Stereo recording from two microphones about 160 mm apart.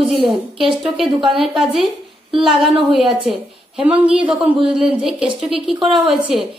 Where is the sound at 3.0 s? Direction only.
35° right (ahead or behind).